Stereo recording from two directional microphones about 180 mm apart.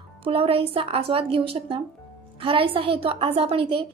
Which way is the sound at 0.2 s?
30° right (ahead or behind).